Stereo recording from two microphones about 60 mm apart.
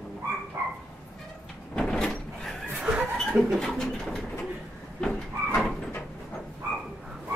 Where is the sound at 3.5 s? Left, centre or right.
Centre.